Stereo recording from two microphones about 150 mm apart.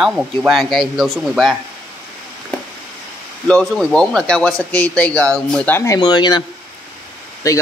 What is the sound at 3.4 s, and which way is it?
A man's voice, centre (ahead or behind).